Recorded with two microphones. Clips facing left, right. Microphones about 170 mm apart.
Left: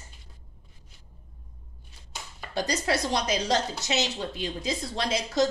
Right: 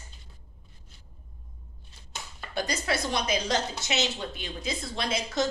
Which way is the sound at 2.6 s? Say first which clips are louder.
Left 2 dB; 35° left (ahead or behind).